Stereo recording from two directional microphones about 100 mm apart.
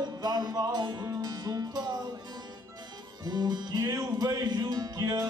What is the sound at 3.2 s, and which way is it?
Music, 45° right (ahead or behind).